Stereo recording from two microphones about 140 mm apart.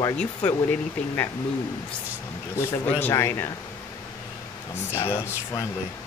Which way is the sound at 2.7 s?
15° left (ahead or behind).